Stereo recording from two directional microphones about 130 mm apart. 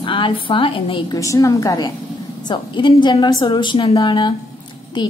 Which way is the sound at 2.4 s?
35° left (ahead or behind).